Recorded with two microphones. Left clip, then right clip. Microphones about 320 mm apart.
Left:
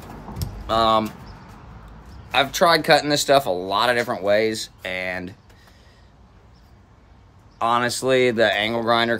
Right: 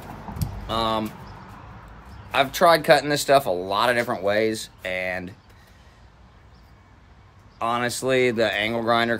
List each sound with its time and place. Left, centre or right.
0.7 s speech: centre
2.3 s speech: centre
7.5 s speech: centre